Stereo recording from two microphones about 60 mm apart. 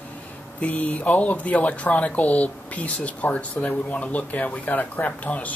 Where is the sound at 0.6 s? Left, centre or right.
Left.